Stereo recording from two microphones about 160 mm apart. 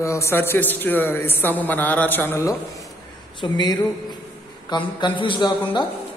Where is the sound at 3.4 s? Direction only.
25° left (ahead or behind).